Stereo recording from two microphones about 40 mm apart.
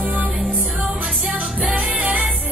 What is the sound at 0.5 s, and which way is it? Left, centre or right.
Music, right.